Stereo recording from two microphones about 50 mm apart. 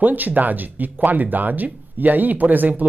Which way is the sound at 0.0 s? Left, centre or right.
Right.